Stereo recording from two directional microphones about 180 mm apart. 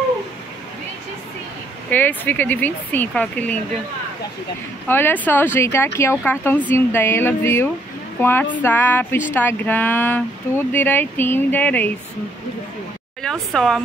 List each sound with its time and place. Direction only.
1.9 s speech: 10° left (ahead or behind)
4.8 s speech: 10° left (ahead or behind)
13.2 s a woman's voice: 5° left (ahead or behind)